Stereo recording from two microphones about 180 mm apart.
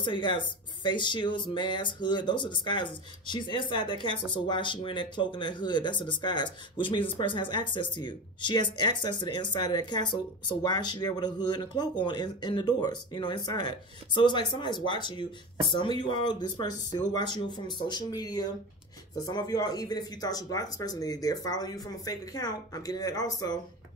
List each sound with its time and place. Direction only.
0.0 s speech: 25° left (ahead or behind)